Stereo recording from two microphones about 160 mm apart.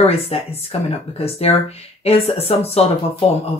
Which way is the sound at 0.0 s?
40° left (ahead or behind).